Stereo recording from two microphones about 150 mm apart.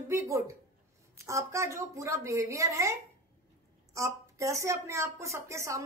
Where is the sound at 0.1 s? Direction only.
20° right (ahead or behind).